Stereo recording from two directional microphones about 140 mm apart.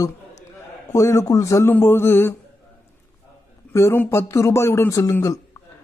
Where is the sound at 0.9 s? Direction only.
25° left (ahead or behind).